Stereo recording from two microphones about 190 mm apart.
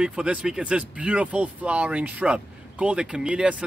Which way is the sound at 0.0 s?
5° right (ahead or behind).